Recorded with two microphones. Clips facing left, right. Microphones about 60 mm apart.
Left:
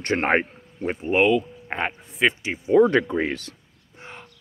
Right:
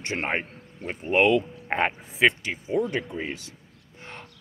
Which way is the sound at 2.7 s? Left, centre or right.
Left.